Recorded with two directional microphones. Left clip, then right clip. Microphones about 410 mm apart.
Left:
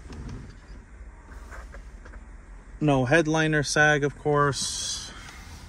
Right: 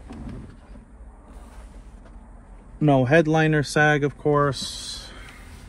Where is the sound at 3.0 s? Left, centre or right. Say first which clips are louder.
Right 2 dB; centre.